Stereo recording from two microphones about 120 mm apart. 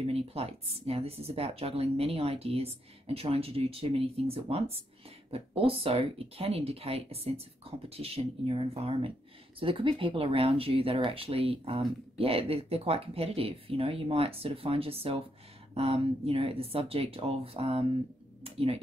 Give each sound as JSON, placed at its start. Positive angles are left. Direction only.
{"t": 0.0, "sound": "speech", "side_deg": -55}